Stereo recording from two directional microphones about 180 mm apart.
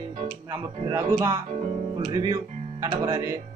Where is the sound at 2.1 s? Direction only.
20° right (ahead or behind).